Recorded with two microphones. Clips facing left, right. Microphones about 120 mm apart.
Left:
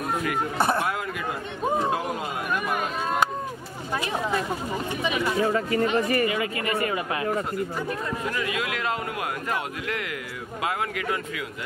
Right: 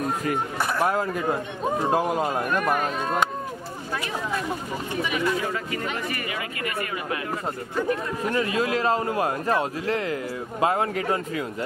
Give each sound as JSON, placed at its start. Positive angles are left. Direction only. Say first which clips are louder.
{"t": 0.6, "sound": "speech", "louder": "left 5 dB", "side_deg": 25}
{"t": 0.8, "sound": "a man's voice", "louder": "right 5 dB", "side_deg": -35}
{"t": 2.5, "sound": "speech", "louder": "right 3 dB", "side_deg": 5}
{"t": 5.5, "sound": "speech", "louder": "left 6 dB", "side_deg": 35}
{"t": 8.2, "sound": "a man's voice", "louder": "right 4 dB", "side_deg": -35}